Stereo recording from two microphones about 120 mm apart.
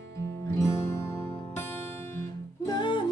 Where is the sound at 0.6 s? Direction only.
25° left (ahead or behind).